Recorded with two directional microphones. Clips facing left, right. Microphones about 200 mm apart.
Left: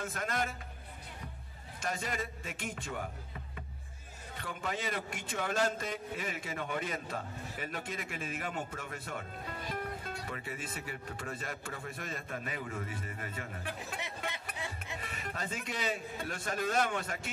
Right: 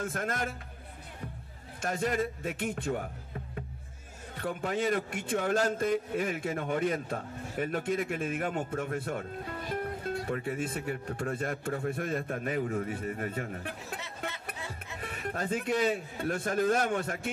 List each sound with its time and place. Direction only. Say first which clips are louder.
0.1 s a man's voice: right 2 dB; 50° right (ahead or behind)
1.8 s a man's voice: right 7 dB; 55° right (ahead or behind)
13.9 s music: right 1 dB; 15° left (ahead or behind)
15.0 s a man's voice: right 7 dB; 55° right (ahead or behind)